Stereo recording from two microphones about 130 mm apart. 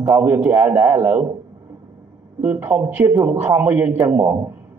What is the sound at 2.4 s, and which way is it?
A man's voice, 15° right (ahead or behind).